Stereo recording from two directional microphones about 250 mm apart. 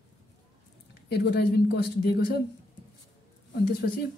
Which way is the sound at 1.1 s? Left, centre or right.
Left.